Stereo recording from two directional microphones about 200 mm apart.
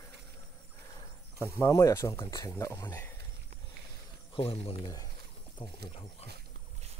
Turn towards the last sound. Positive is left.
turn(degrees=30)  # may be behind; listen again after turning